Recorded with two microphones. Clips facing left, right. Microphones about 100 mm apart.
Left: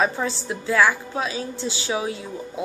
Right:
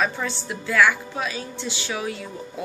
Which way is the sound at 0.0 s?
25° left (ahead or behind).